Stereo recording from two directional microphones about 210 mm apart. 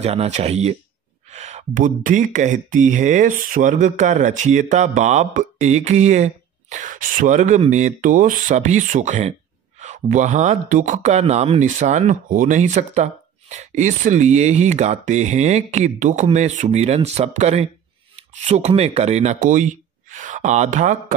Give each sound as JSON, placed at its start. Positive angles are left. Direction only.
{"t": 0.0, "sound": "speech", "side_deg": -30}